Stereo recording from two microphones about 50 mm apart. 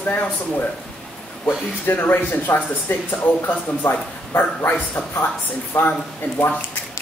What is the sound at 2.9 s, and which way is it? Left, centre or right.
Speech, left.